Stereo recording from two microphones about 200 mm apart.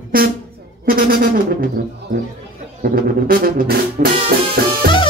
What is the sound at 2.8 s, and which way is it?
Music, 45° right (ahead or behind).